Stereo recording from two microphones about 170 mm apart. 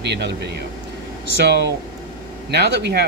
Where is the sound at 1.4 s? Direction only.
80° right.